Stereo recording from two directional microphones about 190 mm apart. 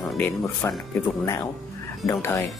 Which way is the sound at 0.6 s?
15° left (ahead or behind).